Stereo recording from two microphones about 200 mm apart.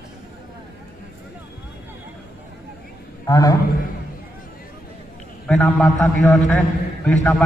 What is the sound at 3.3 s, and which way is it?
Speech, 20° left (ahead or behind).